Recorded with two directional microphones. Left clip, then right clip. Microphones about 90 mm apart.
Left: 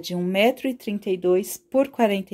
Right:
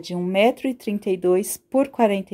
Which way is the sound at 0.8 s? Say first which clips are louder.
Right 2 dB; 50° right (ahead or behind).